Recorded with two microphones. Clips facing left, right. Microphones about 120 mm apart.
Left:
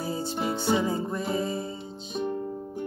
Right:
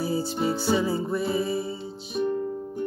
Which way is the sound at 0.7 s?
20° left (ahead or behind).